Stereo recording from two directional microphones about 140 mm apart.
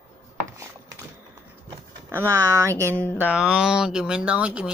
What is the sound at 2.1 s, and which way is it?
Speech, 15° right (ahead or behind).